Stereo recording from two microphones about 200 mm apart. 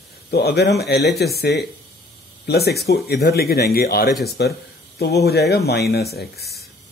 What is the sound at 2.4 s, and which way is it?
Speech, 55° left (ahead or behind).